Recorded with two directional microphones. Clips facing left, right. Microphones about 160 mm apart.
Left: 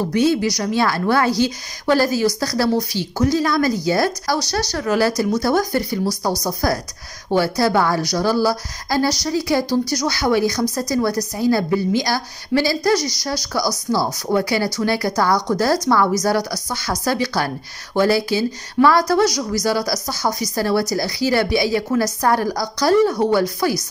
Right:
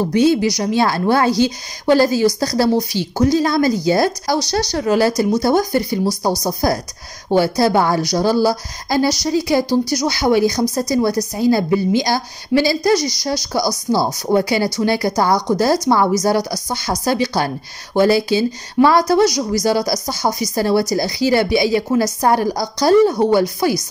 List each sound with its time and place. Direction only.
0.1 s a woman's voice: 20° right (ahead or behind)